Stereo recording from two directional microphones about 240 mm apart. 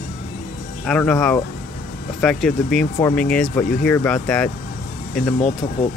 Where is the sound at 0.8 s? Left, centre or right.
Centre.